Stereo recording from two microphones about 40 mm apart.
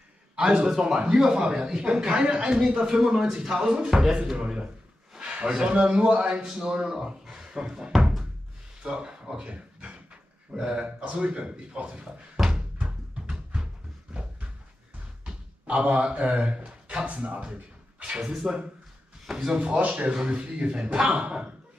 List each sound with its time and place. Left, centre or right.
0.4 s a man's voice: right
0.7 s speech: centre
5.1 s a sound: right
5.7 s speech: right
9.5 s a sound: right
10.8 s speech: right
12.8 s a sound: centre
15.6 s speech: right
19.3 s speech: centre
19.7 s a man's voice: right
20.1 s speech: right